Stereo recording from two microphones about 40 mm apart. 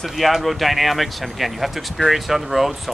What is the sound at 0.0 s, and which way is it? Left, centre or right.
Speech, centre.